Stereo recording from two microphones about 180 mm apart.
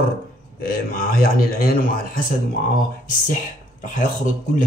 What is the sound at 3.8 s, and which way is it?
Speech, 45° left (ahead or behind).